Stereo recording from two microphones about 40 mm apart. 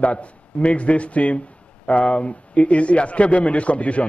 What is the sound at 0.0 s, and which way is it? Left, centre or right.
A man's voice, left.